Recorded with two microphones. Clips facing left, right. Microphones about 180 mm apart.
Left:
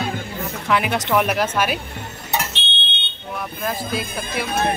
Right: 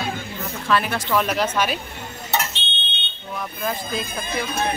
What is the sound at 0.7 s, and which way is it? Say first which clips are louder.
Speech: left 1 dB; 15° left (ahead or behind).